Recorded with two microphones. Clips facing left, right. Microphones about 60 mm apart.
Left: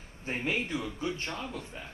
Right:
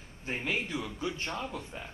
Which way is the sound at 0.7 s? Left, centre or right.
Centre.